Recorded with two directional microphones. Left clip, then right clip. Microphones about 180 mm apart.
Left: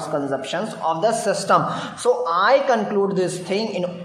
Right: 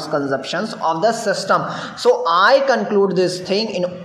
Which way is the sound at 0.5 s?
15° right (ahead or behind).